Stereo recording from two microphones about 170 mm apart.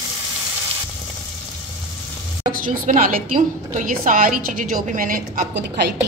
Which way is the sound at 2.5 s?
55° right (ahead or behind).